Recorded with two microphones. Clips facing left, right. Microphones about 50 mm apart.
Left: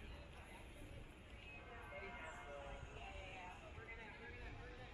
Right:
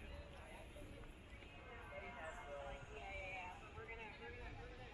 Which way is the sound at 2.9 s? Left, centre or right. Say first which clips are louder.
Right 4 dB; right.